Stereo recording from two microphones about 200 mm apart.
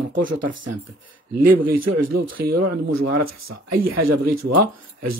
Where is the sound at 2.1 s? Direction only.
45° right (ahead or behind).